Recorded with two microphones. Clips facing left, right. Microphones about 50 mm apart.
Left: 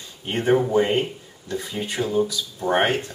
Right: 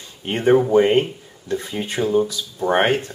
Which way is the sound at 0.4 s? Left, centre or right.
Centre.